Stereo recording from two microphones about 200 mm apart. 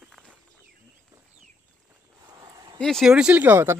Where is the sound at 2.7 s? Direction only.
Centre (ahead or behind).